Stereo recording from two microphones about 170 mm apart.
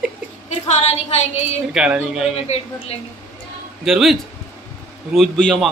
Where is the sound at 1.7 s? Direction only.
5° right (ahead or behind).